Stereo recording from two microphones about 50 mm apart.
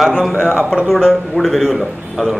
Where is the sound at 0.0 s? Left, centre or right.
Centre.